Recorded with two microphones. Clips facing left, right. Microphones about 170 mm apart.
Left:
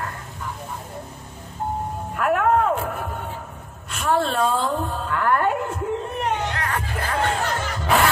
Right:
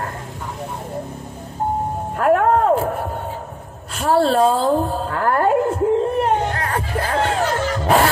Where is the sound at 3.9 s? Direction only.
35° right (ahead or behind).